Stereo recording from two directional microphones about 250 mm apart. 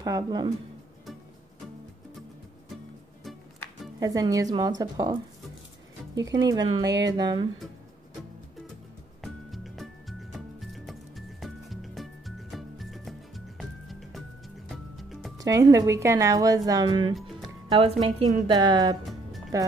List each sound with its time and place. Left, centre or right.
0.0 s speech: centre
3.3 s music: centre
4.0 s speech: centre
6.2 s speech: centre
6.9 s speech: right
7.2 s speech: centre
9.2 s music: centre
15.3 s speech: centre
17.1 s music: centre
17.7 s speech: right